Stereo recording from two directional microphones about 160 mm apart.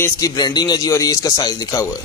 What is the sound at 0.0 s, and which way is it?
A man's voice, 25° left (ahead or behind).